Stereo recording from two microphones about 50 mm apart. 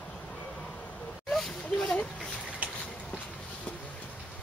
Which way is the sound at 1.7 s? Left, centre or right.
Left.